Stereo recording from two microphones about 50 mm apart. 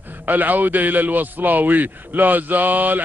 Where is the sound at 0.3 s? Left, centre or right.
Right.